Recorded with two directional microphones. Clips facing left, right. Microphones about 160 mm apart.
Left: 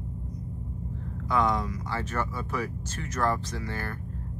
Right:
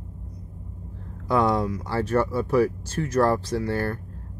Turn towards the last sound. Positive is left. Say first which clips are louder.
# right 9 dB
turn(degrees=-30)  # may be behind; listen again after turning